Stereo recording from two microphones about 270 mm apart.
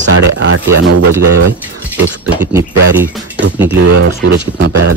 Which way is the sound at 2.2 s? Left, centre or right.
Centre.